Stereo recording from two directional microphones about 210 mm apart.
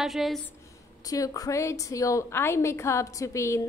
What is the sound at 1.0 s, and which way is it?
A woman's voice, 15° left (ahead or behind).